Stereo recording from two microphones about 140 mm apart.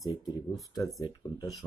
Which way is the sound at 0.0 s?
30° left (ahead or behind).